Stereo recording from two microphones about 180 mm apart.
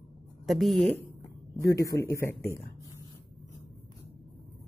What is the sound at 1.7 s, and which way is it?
Speech, 15° left (ahead or behind).